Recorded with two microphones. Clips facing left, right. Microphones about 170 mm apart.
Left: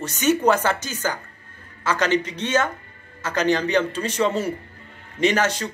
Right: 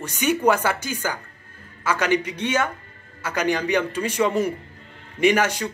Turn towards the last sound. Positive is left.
turn(degrees=-10)  # may be behind; listen again after turning